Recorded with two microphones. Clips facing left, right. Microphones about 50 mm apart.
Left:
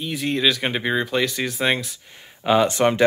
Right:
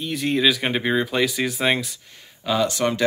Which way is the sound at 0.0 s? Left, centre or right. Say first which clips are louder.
Right 1 dB; centre.